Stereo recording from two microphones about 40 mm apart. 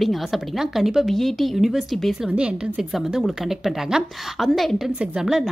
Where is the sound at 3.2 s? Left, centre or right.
Centre.